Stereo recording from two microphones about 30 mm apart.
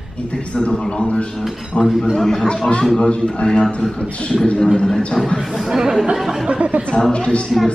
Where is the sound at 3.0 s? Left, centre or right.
Left.